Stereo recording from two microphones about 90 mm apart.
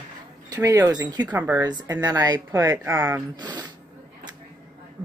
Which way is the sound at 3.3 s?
50° right (ahead or behind).